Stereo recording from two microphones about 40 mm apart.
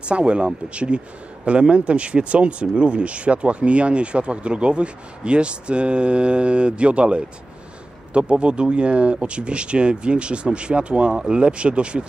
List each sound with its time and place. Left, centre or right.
0.0 s speech: right